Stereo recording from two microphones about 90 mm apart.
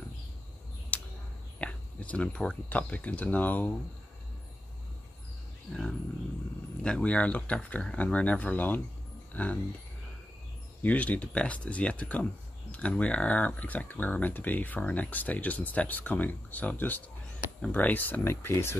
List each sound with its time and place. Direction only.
0.9 s a sound: 15° left (ahead or behind)
1.6 s speech: 15° left (ahead or behind)
5.7 s speech: 5° left (ahead or behind)
10.8 s speech: 15° left (ahead or behind)